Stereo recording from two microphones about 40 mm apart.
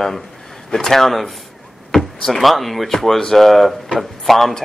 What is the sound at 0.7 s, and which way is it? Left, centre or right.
Speech, centre.